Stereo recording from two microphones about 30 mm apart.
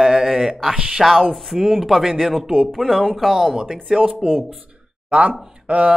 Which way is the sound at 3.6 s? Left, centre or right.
Centre.